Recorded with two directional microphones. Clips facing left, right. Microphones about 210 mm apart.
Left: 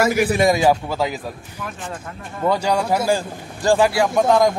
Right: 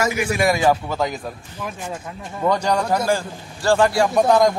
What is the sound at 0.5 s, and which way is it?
Speech, 15° left (ahead or behind).